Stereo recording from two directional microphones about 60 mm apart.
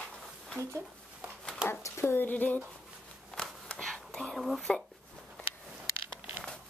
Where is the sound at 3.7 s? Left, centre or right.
Centre.